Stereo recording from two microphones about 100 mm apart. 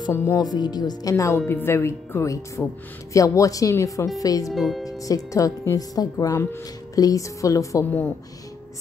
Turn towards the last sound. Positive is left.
turn(degrees=35)  # may be behind; listen again after turning